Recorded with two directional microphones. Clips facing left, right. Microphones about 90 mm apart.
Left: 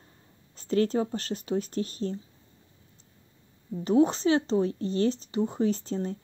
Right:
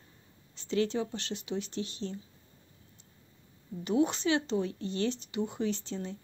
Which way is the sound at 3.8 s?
35° left (ahead or behind).